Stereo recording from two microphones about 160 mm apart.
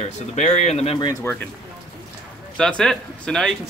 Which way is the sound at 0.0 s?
45° left (ahead or behind).